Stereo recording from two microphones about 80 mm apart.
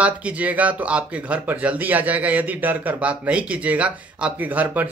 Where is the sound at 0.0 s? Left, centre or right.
Centre.